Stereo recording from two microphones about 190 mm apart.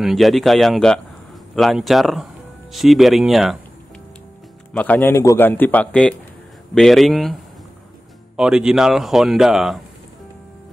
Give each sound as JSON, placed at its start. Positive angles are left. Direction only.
{"t": 0.0, "sound": "speech", "side_deg": 0}
{"t": 4.7, "sound": "a man's voice", "side_deg": 10}
{"t": 8.4, "sound": "speech", "side_deg": -5}